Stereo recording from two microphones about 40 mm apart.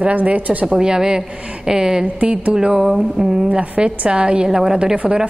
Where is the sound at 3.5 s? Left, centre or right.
Right.